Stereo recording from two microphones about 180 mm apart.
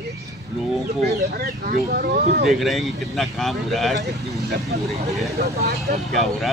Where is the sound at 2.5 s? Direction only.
Centre (ahead or behind).